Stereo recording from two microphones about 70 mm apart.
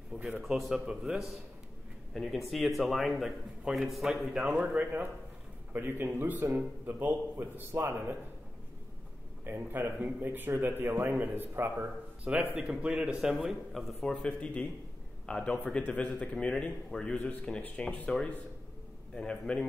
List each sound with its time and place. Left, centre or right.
0.4 s a man's voice: centre
5.7 s a man's voice: right
9.4 s a man's voice: right
12.5 s a man's voice: centre
13.2 s a man's voice: centre
14.1 s speech: centre
19.1 s speech: centre